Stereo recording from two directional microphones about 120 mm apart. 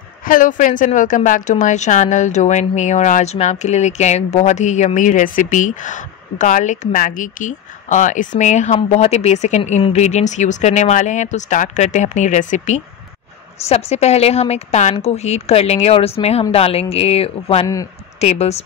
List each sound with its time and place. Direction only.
0.4 s a woman's voice: 90° left
8.8 s a woman's voice: 65° left (ahead or behind); by 12.8 s 90° left
13.7 s a woman's voice: 60° left (ahead or behind)